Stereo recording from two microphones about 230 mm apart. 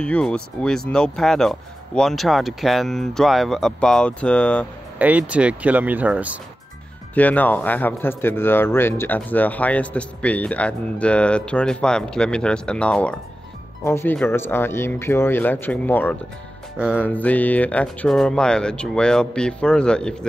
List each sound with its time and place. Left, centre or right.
0.0 s speech: centre
4.9 s speech: centre
7.2 s speech: centre
16.7 s music: centre
17.0 s speech: centre